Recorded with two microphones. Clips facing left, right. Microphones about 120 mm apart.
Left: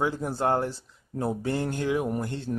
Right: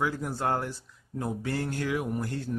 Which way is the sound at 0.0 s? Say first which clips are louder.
Left 3 dB; 25° left (ahead or behind).